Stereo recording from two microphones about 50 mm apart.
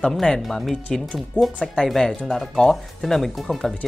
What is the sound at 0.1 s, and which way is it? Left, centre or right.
Speech, centre.